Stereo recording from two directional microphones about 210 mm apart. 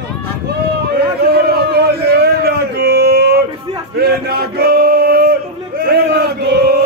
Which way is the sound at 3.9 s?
50° right (ahead or behind).